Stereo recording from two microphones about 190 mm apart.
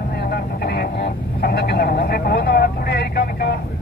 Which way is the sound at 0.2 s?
55° left (ahead or behind).